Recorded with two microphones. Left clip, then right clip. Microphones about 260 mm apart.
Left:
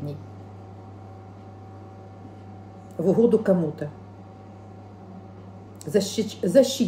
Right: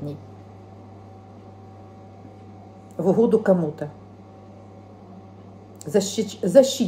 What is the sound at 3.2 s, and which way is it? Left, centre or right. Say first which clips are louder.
Speech: right 1 dB; centre.